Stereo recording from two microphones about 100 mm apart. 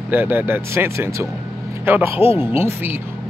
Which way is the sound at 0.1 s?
20° right (ahead or behind).